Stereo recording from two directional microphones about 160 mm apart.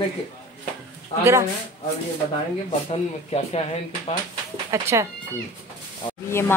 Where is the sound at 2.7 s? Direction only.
35° left (ahead or behind).